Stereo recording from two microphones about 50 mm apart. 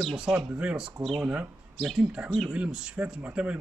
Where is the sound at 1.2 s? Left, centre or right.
Right.